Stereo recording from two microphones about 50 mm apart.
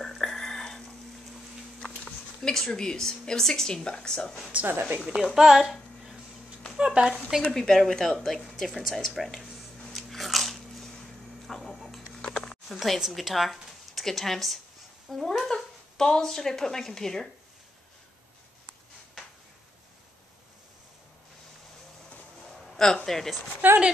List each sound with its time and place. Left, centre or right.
0.0 s a sound: centre
1.8 s speech: centre
4.6 s a woman's voice: right
5.3 s speech: centre
6.8 s speech: centre
7.5 s speech: centre
9.9 s biting: centre
11.4 s a sound: centre
12.6 s speech: centre
23.0 s a woman's voice: centre
23.6 s speech: right